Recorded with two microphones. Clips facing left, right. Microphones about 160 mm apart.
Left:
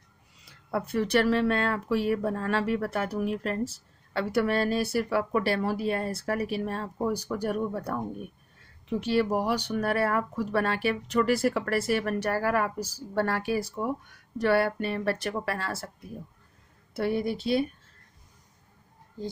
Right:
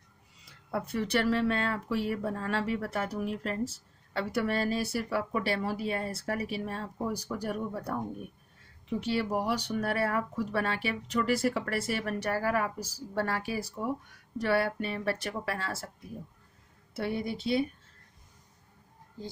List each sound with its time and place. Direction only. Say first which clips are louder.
0.7 s speech: left 4 dB; 65° left (ahead or behind)
9.0 s speech: left 5 dB; 60° left (ahead or behind)
16.9 s speech: left 5 dB; 60° left (ahead or behind)